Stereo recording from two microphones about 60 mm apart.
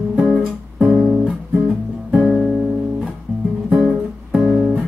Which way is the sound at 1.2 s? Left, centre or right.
Centre.